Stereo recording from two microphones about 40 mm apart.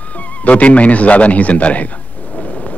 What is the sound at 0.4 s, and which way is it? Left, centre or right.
A man's voice, left.